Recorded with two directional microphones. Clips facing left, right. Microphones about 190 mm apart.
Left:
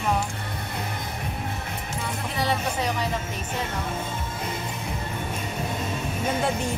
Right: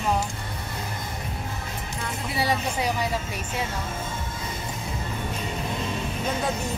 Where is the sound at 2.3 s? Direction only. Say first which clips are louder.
Right 1 dB; 10° right (ahead or behind).